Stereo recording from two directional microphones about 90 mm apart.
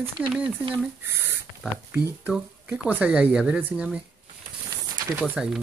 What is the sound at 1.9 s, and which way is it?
Speech, 15° right (ahead or behind).